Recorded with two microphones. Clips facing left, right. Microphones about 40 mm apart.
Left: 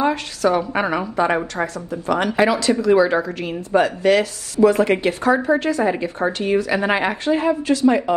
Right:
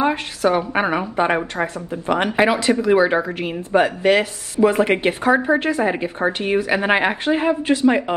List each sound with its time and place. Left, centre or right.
0.0 s a woman's voice: right